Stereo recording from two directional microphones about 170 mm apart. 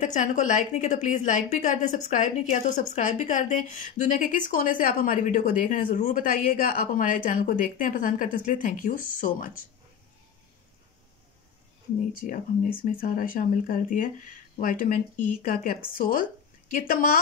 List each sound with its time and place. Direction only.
0.0 s a woman's voice: 45° left (ahead or behind)
12.2 s a woman's voice: 50° left (ahead or behind)